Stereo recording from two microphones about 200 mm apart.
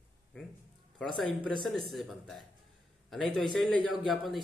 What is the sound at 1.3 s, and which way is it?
Speech, 25° right (ahead or behind).